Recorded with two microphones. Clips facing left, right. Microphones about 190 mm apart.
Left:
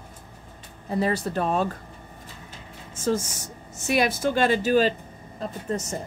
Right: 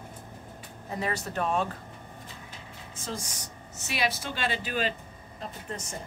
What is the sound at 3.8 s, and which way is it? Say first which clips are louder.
Speech: left 9 dB; 50° left (ahead or behind).